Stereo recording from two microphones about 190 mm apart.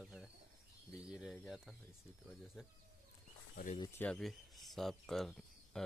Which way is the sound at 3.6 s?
50° left (ahead or behind).